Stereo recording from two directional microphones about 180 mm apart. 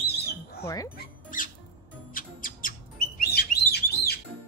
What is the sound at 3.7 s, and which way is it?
Music, 60° left (ahead or behind).